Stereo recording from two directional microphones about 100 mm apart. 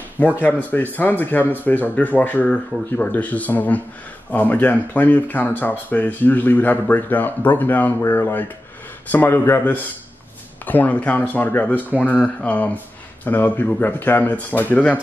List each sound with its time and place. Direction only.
0.4 s speech: 15° left (ahead or behind)